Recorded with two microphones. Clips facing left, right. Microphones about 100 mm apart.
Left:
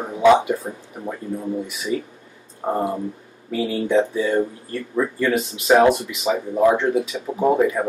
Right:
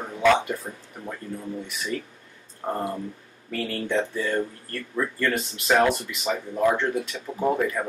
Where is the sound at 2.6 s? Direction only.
15° left (ahead or behind).